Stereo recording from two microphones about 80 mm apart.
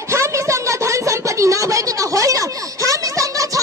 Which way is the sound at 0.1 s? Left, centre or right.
Right.